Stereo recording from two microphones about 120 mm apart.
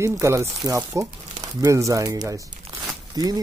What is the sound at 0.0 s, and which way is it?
Speech, 25° right (ahead or behind).